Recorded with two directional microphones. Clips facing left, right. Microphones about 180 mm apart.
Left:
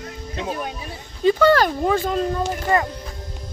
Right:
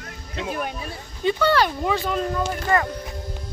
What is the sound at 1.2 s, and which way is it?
Speech, 40° left (ahead or behind).